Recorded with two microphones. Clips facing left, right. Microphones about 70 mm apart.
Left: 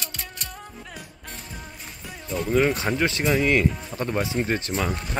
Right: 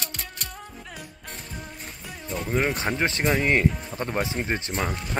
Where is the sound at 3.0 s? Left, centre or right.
Right.